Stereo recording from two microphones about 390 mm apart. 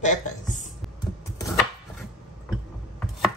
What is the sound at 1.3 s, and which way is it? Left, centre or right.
Chopping, centre.